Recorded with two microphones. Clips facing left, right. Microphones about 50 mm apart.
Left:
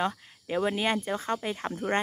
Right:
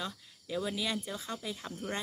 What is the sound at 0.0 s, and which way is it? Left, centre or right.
Speech, left.